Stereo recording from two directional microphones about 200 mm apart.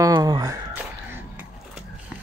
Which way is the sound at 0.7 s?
5° right (ahead or behind).